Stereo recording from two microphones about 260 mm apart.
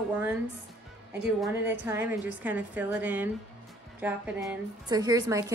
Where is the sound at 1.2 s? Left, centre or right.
Centre.